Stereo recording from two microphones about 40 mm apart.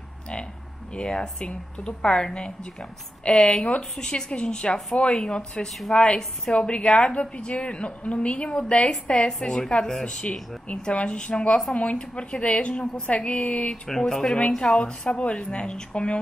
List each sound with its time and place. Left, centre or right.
0.9 s a woman's voice: left
5.7 s a woman's voice: centre
5.9 s a woman's voice: centre
9.5 s speech: centre
10.7 s a woman's voice: left
13.7 s speech: centre
14.6 s a woman's voice: left